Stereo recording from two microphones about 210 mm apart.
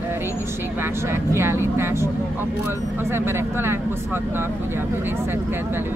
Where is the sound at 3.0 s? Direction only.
10° right (ahead or behind).